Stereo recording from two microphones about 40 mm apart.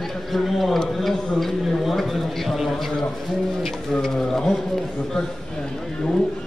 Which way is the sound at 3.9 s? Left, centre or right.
Centre.